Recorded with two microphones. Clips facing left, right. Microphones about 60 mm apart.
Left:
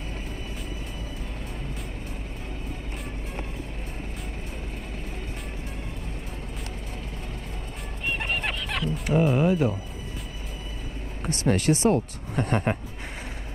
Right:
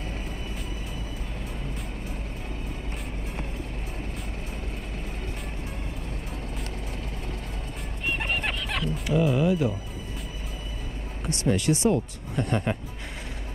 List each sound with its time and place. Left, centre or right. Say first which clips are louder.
8.1 s music: even; centre
9.0 s speech: left 1 dB; left
11.2 s speech: left 1 dB; left